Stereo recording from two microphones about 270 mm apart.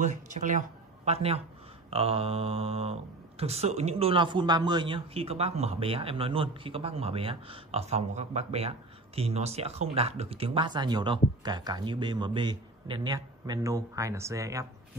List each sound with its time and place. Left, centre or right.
0.0 s speech: right; by 14.7 s centre